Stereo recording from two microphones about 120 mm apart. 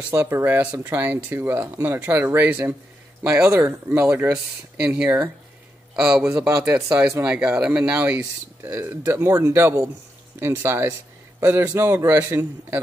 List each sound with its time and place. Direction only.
0.1 s a man's voice: 20° right (ahead or behind)
4.7 s a man's voice: 10° right (ahead or behind)
8.2 s a man's voice: 25° right (ahead or behind)